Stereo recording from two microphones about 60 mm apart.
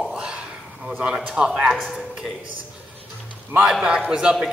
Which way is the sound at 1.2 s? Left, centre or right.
Centre.